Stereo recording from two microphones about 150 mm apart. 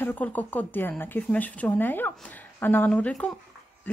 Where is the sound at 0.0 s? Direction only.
10° left (ahead or behind).